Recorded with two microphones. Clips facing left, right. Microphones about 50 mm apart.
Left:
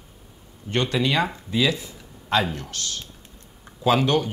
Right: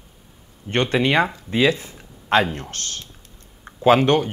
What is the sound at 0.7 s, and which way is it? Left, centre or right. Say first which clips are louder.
Speech: right 4 dB; right.